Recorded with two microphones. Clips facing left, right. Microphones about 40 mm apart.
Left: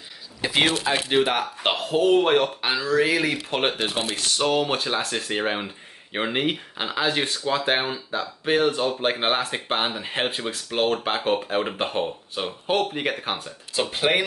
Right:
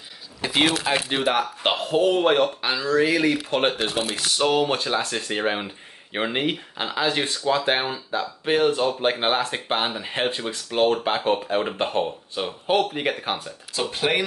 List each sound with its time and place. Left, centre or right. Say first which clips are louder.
0.4 s speech: even; centre
4.1 s speech: right 1 dB; centre
13.7 s speech: left 1 dB; centre